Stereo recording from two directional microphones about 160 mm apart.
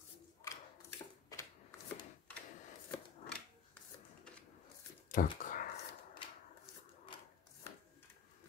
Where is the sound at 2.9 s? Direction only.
5° left (ahead or behind).